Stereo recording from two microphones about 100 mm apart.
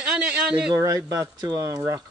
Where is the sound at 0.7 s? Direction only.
35° right (ahead or behind).